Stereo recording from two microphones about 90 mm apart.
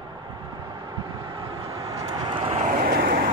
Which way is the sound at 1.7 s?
40° right (ahead or behind).